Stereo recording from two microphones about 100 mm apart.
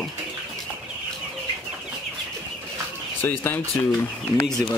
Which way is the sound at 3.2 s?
20° left (ahead or behind).